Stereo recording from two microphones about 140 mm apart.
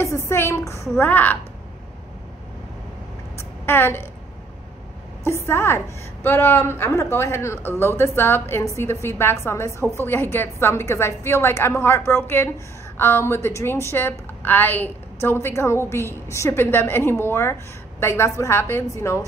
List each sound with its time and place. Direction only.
0.0 s a woman's voice: 20° left (ahead or behind)
3.3 s a sound: 15° left (ahead or behind)
5.2 s a woman's voice: 20° left (ahead or behind)